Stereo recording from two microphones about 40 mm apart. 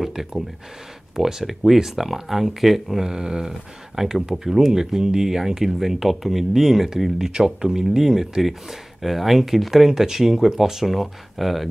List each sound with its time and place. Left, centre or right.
0.0 s a sound: centre
1.1 s speech: centre
3.0 s speech: centre
3.9 s speech: centre
10.9 s speech: centre